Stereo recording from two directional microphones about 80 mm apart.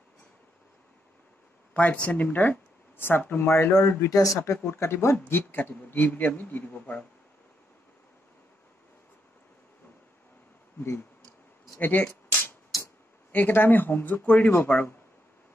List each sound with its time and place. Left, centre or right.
1.7 s speech: centre
3.4 s a man's voice: left
11.8 s a sound: left
13.3 s a man's voice: left
14.2 s speech: centre
14.5 s a man's voice: left